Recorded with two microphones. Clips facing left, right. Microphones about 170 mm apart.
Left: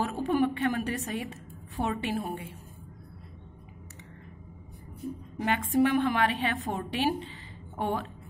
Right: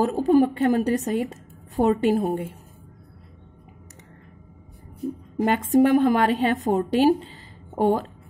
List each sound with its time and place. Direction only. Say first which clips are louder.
0.0 s a woman's voice: right 8 dB; 40° right (ahead or behind)
5.4 s a woman's voice: right 7 dB; 45° right (ahead or behind)